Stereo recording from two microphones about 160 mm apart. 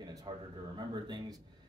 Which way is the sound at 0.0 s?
25° right (ahead or behind).